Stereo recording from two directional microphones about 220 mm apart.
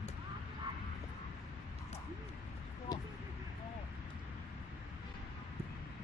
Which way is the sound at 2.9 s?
20° left (ahead or behind).